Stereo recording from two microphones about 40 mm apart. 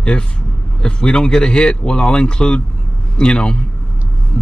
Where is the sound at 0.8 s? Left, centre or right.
Left.